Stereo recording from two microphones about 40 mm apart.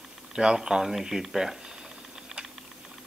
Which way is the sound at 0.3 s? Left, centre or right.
Centre.